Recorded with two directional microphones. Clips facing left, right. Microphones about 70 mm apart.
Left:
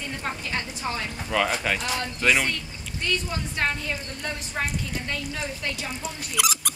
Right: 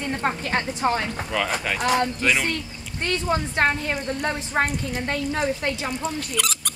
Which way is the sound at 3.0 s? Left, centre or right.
Right.